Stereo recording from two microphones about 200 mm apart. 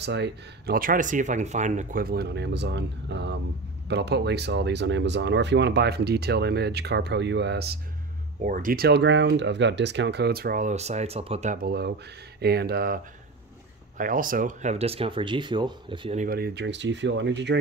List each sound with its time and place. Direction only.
0.0 s speech: 60° right (ahead or behind)
8.4 s speech: 45° right (ahead or behind)
11.6 s speech: 55° right (ahead or behind); by 16.2 s 25° right (ahead or behind)
16.2 s speech: 50° right (ahead or behind)